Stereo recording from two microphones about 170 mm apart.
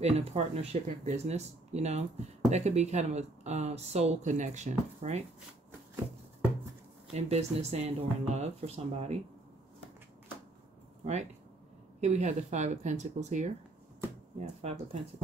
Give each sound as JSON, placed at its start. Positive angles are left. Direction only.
{"t": 0.0, "sound": "speech", "side_deg": -40}
{"t": 7.2, "sound": "speech", "side_deg": -40}
{"t": 12.0, "sound": "speech", "side_deg": -40}